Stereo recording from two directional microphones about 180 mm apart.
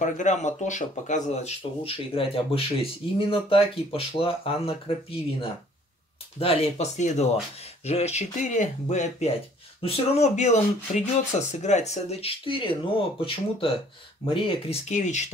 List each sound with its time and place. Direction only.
0.0 s speech: 40° left (ahead or behind)
6.3 s speech: 30° left (ahead or behind)